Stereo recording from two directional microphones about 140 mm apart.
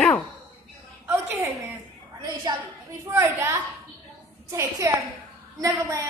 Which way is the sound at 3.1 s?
15° right (ahead or behind).